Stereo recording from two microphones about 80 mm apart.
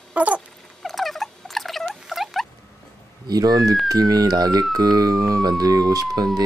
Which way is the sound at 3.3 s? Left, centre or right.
Right.